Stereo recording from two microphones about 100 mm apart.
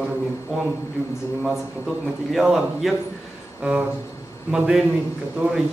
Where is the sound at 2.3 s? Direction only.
Centre (ahead or behind).